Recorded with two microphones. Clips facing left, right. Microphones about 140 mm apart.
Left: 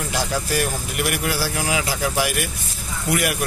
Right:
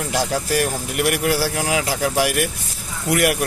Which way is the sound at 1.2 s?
60° right (ahead or behind).